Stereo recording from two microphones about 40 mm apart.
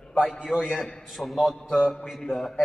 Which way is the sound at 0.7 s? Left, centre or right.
Centre.